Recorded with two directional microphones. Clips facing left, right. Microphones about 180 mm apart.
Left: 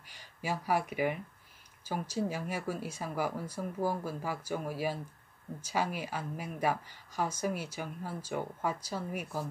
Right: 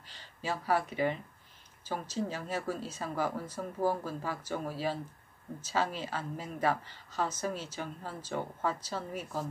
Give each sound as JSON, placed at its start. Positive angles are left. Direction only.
{"t": 0.0, "sound": "speech", "side_deg": 10}